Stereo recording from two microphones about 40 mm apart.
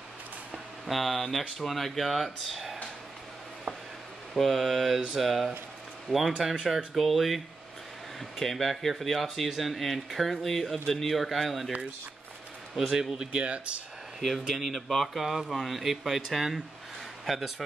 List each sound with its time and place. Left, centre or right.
0.8 s speech: centre
4.3 s a man's voice: centre
12.7 s speech: centre
13.1 s speech: centre
13.4 s speech: right
14.2 s speech: centre